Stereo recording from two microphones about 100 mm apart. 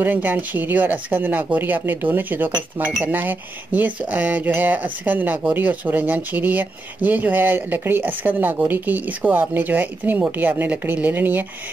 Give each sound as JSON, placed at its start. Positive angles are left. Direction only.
{"t": 0.0, "sound": "speech", "side_deg": -20}